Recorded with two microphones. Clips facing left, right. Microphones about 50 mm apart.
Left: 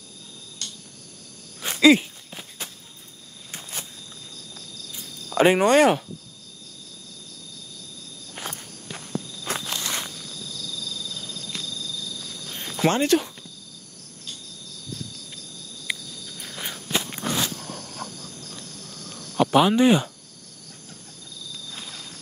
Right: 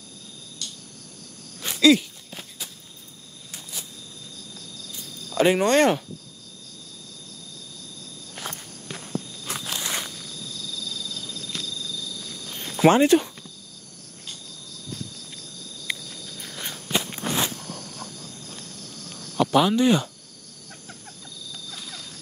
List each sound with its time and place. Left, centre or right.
0.6 s a sound: left
1.7 s a sound: left
5.3 s speech: left
5.8 s speech: centre
8.4 s walk: centre
9.6 s walk: centre
12.4 s cricket: centre
12.8 s speech: centre
15.9 s walk: centre
17.3 s a sound: right
19.3 s speech: left